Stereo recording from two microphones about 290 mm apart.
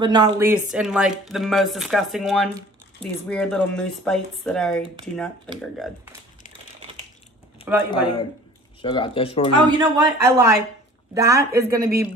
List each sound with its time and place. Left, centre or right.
0.0 s speech: centre
7.7 s speech: centre
8.8 s speech: centre
9.7 s speech: centre
11.5 s a woman's voice: right